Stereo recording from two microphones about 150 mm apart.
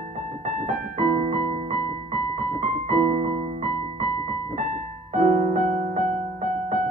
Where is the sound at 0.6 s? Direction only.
50° right (ahead or behind).